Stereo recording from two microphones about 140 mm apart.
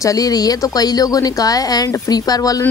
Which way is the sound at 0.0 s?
25° left (ahead or behind).